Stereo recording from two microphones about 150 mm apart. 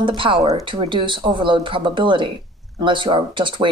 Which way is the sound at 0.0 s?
35° right (ahead or behind).